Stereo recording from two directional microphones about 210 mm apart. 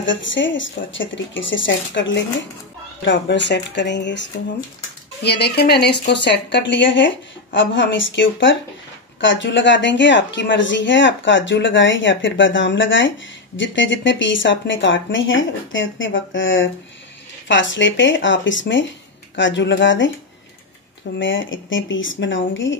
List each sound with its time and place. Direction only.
0.0 s speech: 60° left (ahead or behind)
21.2 s speech: 65° left (ahead or behind)